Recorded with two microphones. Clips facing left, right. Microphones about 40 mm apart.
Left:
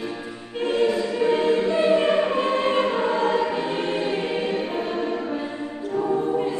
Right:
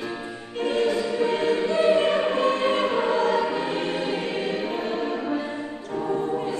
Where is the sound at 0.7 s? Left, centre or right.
Centre.